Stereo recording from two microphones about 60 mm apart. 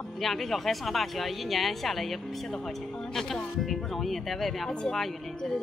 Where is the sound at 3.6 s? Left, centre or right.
Centre.